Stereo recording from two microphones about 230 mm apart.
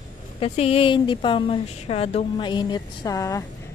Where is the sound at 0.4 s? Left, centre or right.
Left.